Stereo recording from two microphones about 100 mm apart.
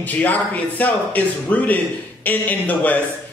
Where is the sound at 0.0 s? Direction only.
15° left (ahead or behind).